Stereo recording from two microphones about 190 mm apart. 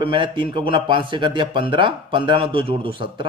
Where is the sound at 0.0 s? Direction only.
25° right (ahead or behind).